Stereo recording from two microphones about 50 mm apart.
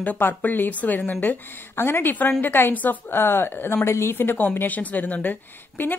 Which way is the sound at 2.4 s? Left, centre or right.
Left.